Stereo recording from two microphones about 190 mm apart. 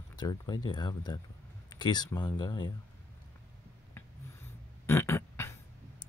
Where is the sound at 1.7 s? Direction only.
20° left (ahead or behind).